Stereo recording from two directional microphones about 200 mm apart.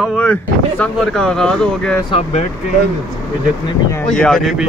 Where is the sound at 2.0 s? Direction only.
25° left (ahead or behind).